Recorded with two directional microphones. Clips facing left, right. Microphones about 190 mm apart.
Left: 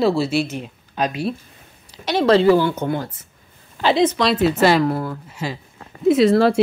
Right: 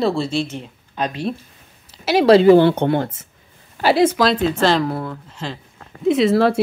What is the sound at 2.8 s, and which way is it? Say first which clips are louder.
Speech: right 5 dB; 65° right (ahead or behind).